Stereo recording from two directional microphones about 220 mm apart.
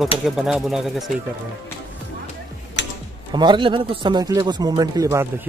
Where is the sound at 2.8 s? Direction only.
55° left (ahead or behind).